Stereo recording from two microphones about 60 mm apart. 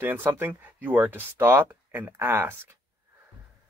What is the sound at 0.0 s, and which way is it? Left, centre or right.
Speech, right.